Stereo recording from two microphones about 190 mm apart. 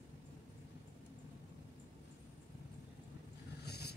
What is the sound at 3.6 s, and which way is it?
Vehicle, 60° left (ahead or behind).